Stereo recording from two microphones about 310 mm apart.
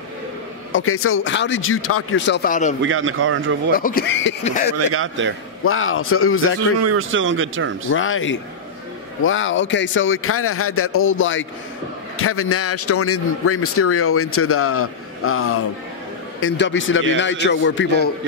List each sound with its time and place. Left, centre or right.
0.7 s a man's voice: left
2.8 s speech: right
3.7 s a man's voice: left
4.5 s speech: left
4.7 s speech: right
5.7 s a man's voice: left
6.8 s speech: right
7.9 s a man's voice: left